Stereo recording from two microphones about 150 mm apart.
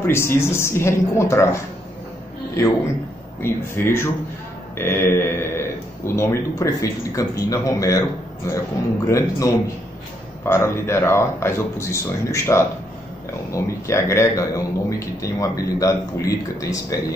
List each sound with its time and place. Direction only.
0.0 s speech: 15° left (ahead or behind)
3.4 s a man's voice: 15° left (ahead or behind)
13.8 s a man's voice: 20° left (ahead or behind)